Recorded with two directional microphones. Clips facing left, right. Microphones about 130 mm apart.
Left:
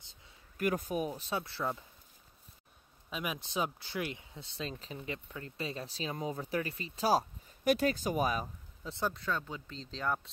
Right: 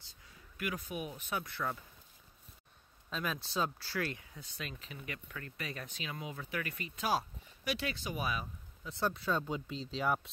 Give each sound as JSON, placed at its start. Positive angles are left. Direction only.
{"t": 0.0, "sound": "a sound", "side_deg": 25}
{"t": 0.6, "sound": "speech", "side_deg": 45}
{"t": 3.1, "sound": "speech", "side_deg": 15}
{"t": 9.1, "sound": "speech", "side_deg": -10}